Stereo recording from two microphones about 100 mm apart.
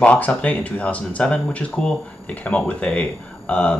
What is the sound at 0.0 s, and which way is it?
Speech, 10° left (ahead or behind).